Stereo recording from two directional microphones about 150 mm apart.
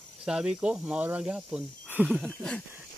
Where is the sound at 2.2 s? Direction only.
5° left (ahead or behind).